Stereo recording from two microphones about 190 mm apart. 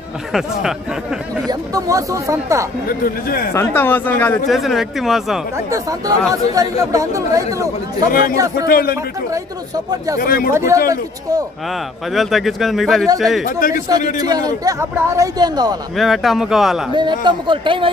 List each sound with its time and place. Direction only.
0.3 s speech: centre (ahead or behind)
1.5 s speech: 20° right (ahead or behind)
2.9 s a man's voice: 50° left (ahead or behind)
3.5 s speech: 10° left (ahead or behind)
4.5 s speech: centre (ahead or behind)
5.7 s speech: 20° right (ahead or behind)
8.1 s a man's voice: 50° left (ahead or behind)
10.1 s a man's voice: 50° left (ahead or behind)
10.5 s speech: 15° right (ahead or behind)
12.1 s speech: centre (ahead or behind)
13.6 s a man's voice: 45° left (ahead or behind)
14.2 s speech: 20° right (ahead or behind)
16.0 s speech: centre (ahead or behind)
16.9 s speech: 25° right (ahead or behind)